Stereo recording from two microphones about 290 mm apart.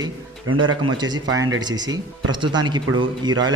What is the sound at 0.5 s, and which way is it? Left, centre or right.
Speech, right.